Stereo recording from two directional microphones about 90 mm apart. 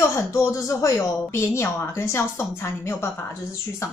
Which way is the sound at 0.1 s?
35° left (ahead or behind).